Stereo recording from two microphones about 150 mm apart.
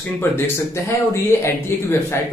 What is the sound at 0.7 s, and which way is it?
Speech, 20° left (ahead or behind).